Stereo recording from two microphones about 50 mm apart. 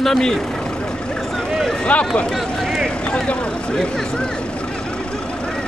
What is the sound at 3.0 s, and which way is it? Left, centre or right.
Vehicle, centre.